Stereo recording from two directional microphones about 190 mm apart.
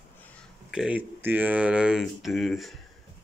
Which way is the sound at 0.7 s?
5° right (ahead or behind).